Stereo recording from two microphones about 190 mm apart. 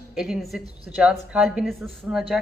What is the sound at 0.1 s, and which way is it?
A woman's voice, centre (ahead or behind).